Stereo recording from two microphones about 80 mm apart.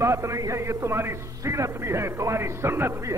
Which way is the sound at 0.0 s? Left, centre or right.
Right.